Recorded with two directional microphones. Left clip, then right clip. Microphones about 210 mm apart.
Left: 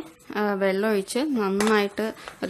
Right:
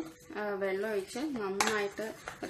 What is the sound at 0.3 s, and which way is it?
A woman's voice, 55° left (ahead or behind).